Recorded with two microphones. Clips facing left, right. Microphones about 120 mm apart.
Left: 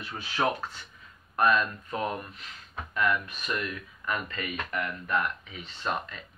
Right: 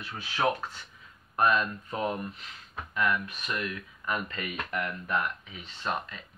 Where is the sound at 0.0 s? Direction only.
Centre (ahead or behind).